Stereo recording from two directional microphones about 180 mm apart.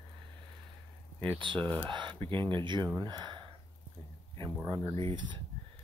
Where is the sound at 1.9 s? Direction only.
25° right (ahead or behind).